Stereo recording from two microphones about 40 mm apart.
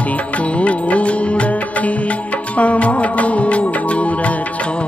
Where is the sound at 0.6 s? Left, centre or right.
Left.